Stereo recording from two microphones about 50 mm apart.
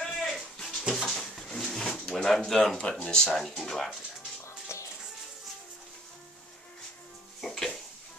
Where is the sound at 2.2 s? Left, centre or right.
Centre.